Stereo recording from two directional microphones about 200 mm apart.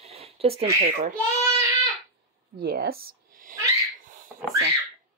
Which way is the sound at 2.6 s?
50° right (ahead or behind).